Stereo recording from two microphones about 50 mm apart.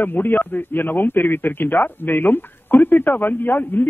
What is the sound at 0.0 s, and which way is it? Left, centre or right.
Speech, left.